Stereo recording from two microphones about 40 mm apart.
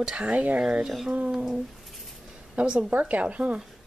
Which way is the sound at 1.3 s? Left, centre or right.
Centre.